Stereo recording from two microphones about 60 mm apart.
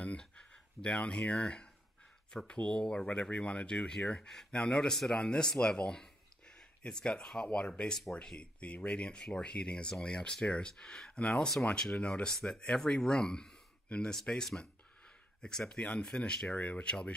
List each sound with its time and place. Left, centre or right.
0.0 s speech: centre